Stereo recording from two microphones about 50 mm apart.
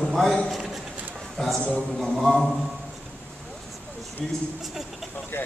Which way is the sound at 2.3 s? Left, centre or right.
Centre.